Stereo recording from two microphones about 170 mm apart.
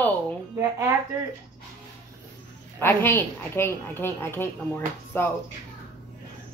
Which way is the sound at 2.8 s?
10° left (ahead or behind).